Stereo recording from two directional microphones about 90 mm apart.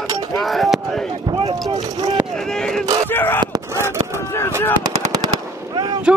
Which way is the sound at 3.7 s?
30° right (ahead or behind).